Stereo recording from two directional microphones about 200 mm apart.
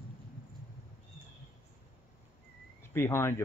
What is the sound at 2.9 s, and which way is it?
Speech, 10° left (ahead or behind).